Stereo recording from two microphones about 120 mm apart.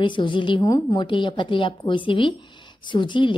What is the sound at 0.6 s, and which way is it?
A woman's voice, 30° left (ahead or behind).